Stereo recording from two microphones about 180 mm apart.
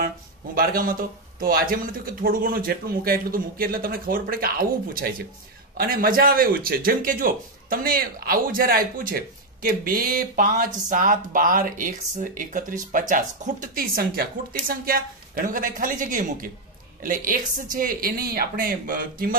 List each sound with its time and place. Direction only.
0.6 s speech: 55° right (ahead or behind)